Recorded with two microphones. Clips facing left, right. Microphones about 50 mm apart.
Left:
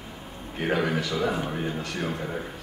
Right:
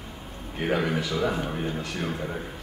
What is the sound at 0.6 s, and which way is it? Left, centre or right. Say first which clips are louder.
Speech: even; centre.